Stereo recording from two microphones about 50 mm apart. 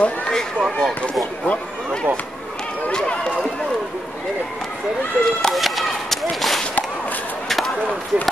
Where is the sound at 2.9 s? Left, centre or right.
Centre.